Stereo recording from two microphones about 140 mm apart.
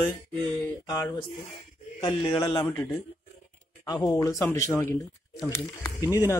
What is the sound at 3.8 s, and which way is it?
A man's voice, 25° left (ahead or behind).